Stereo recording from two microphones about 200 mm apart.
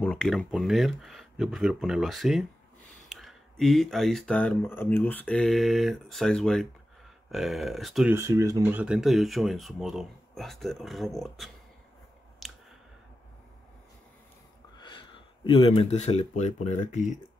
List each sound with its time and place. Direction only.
0.0 s speech: 5° left (ahead or behind)
8.1 s speech: 15° right (ahead or behind)
12.4 s clicking: centre (ahead or behind)
14.8 s speech: 25° left (ahead or behind)